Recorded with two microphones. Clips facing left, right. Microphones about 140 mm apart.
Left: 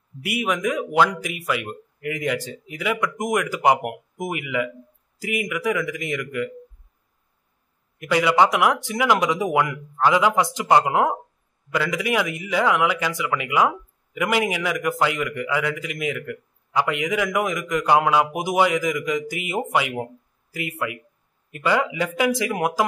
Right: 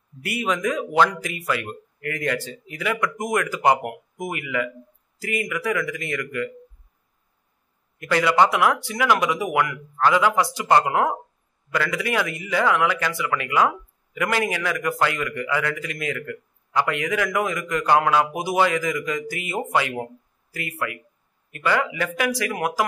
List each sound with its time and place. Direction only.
0.2 s speech: 10° left (ahead or behind)
8.0 s a man's voice: 15° left (ahead or behind)